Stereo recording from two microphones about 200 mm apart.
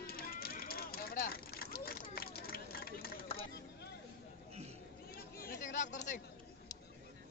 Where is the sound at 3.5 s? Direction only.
55° left (ahead or behind).